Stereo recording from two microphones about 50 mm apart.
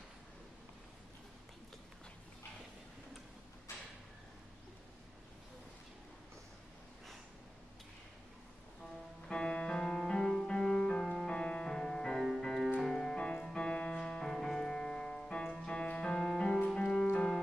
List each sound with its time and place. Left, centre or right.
9.3 s music: left
11.2 s music: left
13.2 s music: centre
16.2 s music: centre